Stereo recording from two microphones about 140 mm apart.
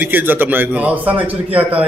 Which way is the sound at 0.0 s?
15° right (ahead or behind).